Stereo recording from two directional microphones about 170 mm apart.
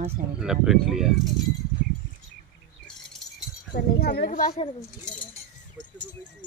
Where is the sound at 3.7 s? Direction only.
70° left (ahead or behind).